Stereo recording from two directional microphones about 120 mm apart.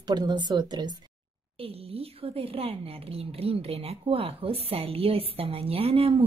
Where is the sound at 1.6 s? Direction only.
55° right (ahead or behind).